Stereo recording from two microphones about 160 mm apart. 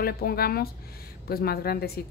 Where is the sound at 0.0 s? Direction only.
70° left (ahead or behind).